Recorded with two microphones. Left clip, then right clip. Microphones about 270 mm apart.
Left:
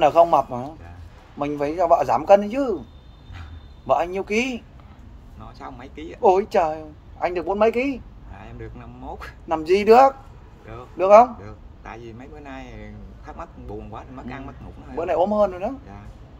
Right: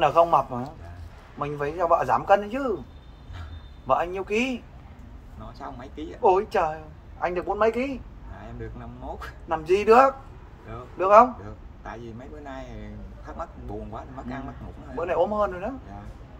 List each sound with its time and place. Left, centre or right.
0.0 s speech: left
3.8 s speech: left
5.6 s speech: centre
6.2 s speech: left
9.5 s speech: left
11.4 s speech: centre
15.0 s speech: left